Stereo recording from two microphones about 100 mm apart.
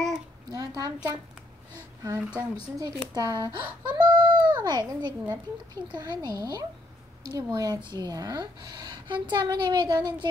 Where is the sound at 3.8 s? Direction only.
50° right (ahead or behind).